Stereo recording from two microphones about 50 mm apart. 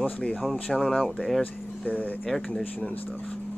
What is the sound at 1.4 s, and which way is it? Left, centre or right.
Speech, left.